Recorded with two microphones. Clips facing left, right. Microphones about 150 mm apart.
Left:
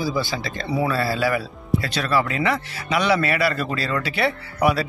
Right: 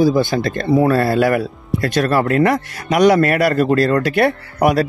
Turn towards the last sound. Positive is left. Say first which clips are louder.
# right 5 dB
turn(degrees=-45)  # may be behind; listen again after turning